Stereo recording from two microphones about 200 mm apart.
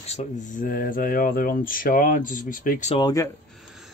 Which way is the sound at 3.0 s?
20° left (ahead or behind).